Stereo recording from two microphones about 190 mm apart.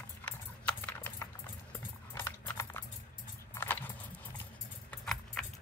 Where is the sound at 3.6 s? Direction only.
10° left (ahead or behind).